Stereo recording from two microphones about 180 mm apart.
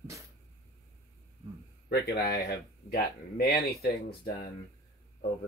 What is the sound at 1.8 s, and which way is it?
Speech, 55° left (ahead or behind).